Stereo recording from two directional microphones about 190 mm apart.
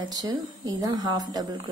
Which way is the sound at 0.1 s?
20° right (ahead or behind).